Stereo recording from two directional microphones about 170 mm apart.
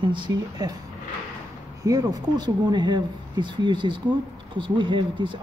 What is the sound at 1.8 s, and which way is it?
Speech, 20° right (ahead or behind).